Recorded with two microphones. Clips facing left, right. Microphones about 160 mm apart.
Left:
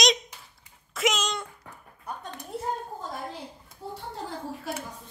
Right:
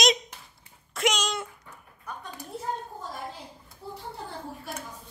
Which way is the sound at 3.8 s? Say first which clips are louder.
Left 2 dB; 90° left.